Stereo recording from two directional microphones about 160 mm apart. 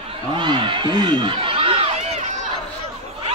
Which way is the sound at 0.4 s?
30° right (ahead or behind).